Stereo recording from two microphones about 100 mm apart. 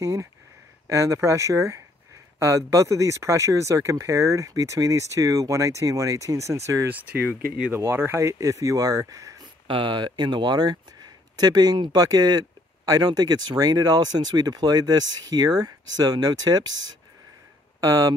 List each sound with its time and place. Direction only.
0.0 s speech: 35° right (ahead or behind)
6.9 s speech: 15° right (ahead or behind)
7.7 s speech: 25° right (ahead or behind)
9.7 s speech: 55° right (ahead or behind)
17.7 s speech: 35° right (ahead or behind)